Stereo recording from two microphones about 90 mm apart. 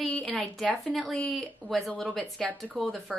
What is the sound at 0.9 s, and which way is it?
A woman's voice, 10° left (ahead or behind).